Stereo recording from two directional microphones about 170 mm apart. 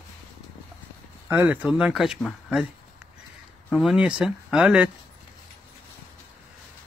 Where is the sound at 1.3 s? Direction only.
10° right (ahead or behind).